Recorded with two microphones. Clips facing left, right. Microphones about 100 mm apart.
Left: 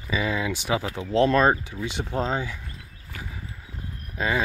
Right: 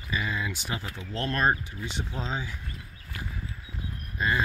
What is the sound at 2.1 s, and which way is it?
Speech, 50° left (ahead or behind).